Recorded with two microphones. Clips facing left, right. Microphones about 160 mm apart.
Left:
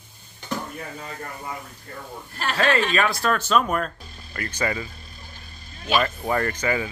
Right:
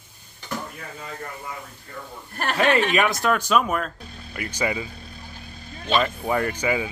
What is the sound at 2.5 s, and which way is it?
Speech, 20° right (ahead or behind).